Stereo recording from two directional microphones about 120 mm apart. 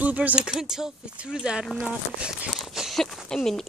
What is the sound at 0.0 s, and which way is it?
Speech, 10° right (ahead or behind).